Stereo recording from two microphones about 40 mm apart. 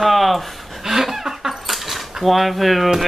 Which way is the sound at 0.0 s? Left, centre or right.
Centre.